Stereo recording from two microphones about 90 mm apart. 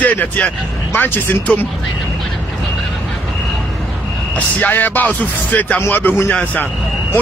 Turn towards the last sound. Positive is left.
turn(degrees=15)  # may be behind; listen again after turning